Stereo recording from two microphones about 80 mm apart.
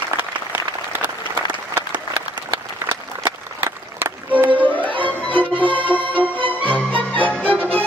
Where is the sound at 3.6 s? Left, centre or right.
Right.